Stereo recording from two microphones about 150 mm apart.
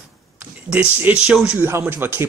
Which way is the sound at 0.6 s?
10° right (ahead or behind).